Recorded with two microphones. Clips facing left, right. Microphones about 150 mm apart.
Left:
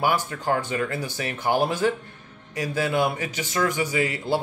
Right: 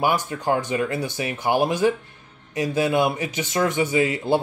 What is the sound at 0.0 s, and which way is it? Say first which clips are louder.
Speech: right 2 dB; 20° right (ahead or behind).